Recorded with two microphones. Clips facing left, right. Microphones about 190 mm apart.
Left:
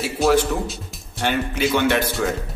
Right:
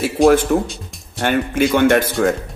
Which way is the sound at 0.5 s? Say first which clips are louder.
Right 7 dB; 55° right (ahead or behind).